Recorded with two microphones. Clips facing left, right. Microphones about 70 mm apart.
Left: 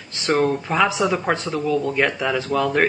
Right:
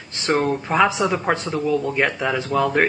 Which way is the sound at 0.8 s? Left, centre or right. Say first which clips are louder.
Even; right.